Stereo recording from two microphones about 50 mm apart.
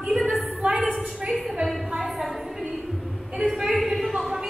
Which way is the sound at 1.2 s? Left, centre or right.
Right.